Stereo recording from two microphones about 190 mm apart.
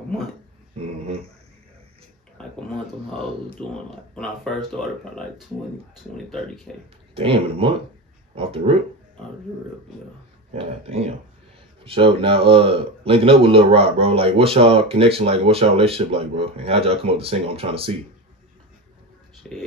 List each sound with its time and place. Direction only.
2.4 s a sound: 5° left (ahead or behind)
4.1 s speech: 5° left (ahead or behind)
6.1 s speech: 5° left (ahead or behind)
7.2 s speech: 30° right (ahead or behind)
10.5 s speech: 35° right (ahead or behind)
19.4 s speech: 5° left (ahead or behind)